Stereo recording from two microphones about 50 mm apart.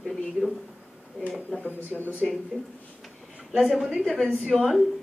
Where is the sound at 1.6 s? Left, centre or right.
Left.